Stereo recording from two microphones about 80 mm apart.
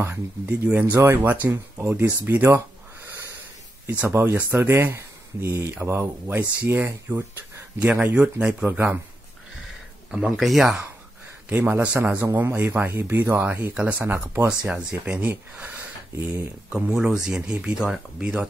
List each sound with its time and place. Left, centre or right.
0.0 s speech: right
4.1 s speech: right
7.8 s speech: centre
8.7 s speech: right
10.3 s speech: centre
11.4 s speech: right
14.5 s speech: centre